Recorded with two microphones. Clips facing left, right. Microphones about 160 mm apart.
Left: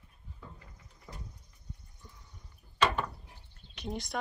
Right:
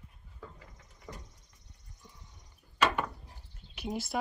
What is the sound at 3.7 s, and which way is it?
Speech, 5° right (ahead or behind).